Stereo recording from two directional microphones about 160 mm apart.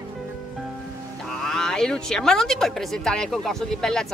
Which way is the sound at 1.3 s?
5° left (ahead or behind).